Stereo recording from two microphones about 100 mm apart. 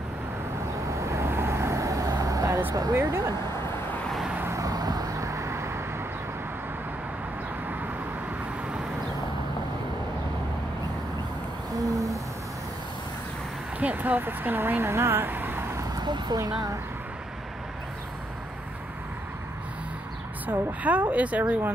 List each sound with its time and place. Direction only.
1.0 s vehicle: 30° right (ahead or behind)
2.7 s speech: 35° right (ahead or behind)
4.5 s vehicle: 35° right (ahead or behind)
11.8 s owl: 35° right (ahead or behind)
13.7 s speech: 15° right (ahead or behind)
15.8 s vehicle: 45° right (ahead or behind)
20.4 s speech: 15° right (ahead or behind)